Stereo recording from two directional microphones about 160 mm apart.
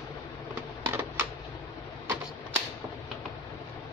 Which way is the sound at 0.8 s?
15° right (ahead or behind).